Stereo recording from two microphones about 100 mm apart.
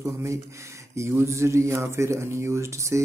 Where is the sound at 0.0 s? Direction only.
30° right (ahead or behind).